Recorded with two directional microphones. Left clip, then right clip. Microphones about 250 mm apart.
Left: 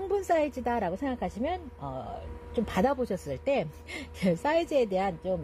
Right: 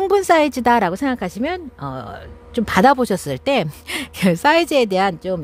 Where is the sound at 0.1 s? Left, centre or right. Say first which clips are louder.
Right 11 dB; right.